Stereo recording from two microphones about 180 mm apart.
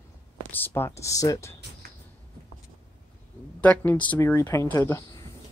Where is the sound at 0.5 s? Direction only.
10° left (ahead or behind).